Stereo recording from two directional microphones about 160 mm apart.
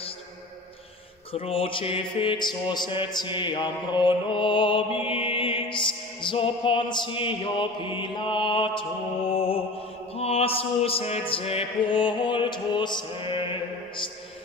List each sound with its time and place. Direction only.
1.3 s music: 35° left (ahead or behind)